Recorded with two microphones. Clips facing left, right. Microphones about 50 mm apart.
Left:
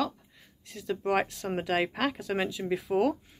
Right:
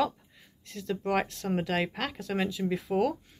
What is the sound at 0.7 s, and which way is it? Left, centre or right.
Speech, centre.